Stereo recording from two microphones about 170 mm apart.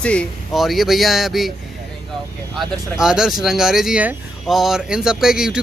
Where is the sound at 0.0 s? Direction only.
5° left (ahead or behind).